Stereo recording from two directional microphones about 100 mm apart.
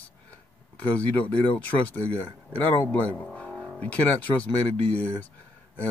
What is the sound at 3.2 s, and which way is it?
Vehicle, 10° left (ahead or behind).